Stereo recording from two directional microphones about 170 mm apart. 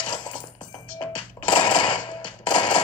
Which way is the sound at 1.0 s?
25° left (ahead or behind).